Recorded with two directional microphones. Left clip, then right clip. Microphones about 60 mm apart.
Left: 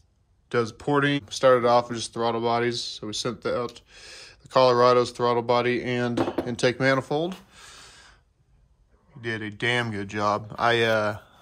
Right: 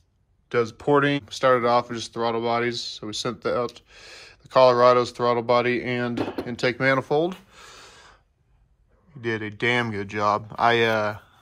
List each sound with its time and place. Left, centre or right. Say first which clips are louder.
0.5 s speech: right 2 dB; left
0.7 s speech: right 5 dB; left
1.2 s speech: left 1 dB; left
6.0 s speech: left 2 dB; left
6.9 s a sound: right 3 dB; left
9.2 s speech: right 3 dB; left